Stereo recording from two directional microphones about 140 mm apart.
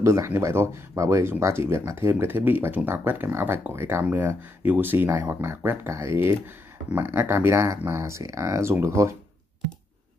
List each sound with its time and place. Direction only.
0.0 s speech: 20° right (ahead or behind)